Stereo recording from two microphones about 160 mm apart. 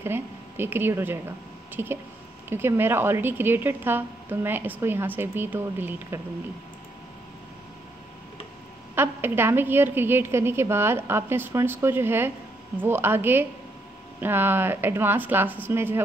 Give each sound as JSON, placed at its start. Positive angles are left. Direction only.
{"t": 0.0, "sound": "a woman's voice", "side_deg": -15}
{"t": 8.9, "sound": "a woman's voice", "side_deg": -15}